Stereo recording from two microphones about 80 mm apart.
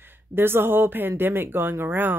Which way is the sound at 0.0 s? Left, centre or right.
Right.